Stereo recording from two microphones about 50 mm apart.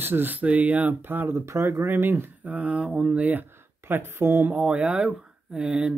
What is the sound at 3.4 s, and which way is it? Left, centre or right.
Speech, right.